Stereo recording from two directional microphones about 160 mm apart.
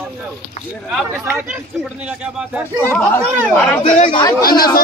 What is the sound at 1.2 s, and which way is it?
A man's voice, 10° right (ahead or behind).